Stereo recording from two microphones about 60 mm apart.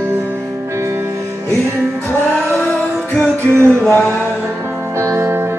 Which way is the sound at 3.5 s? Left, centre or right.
Right.